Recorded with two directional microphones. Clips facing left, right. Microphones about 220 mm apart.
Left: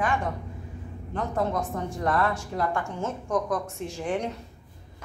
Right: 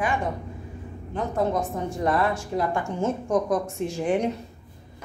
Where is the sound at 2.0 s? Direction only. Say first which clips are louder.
Right 2 dB; 15° right (ahead or behind).